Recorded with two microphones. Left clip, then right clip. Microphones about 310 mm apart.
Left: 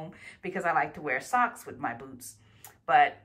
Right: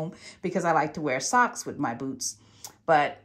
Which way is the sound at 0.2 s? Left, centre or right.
Centre.